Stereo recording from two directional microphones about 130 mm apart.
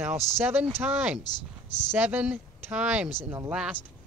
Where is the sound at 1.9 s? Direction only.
10° right (ahead or behind).